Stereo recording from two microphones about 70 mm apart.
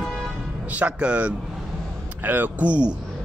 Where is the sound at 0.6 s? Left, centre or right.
Right.